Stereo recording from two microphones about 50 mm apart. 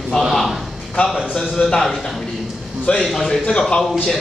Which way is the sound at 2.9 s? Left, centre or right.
Left.